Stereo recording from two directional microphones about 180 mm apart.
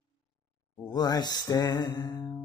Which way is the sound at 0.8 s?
20° left (ahead or behind).